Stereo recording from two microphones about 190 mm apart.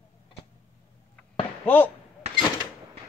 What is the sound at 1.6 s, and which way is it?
Speech, 10° left (ahead or behind).